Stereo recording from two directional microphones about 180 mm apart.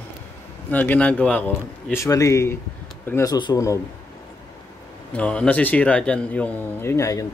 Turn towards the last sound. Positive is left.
turn(degrees=20)  # may be behind; listen again after turning